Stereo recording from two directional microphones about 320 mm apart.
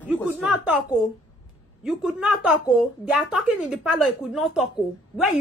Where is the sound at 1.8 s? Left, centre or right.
Centre.